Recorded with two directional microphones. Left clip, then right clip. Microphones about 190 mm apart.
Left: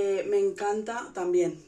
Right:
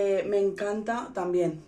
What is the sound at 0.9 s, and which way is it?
Speech, 15° left (ahead or behind).